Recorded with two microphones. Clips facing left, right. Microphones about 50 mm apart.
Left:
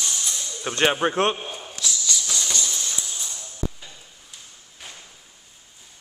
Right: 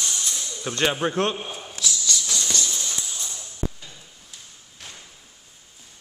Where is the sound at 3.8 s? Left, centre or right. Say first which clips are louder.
Even; centre.